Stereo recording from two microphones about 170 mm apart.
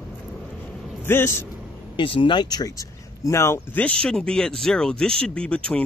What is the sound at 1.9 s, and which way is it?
Speech, 30° left (ahead or behind).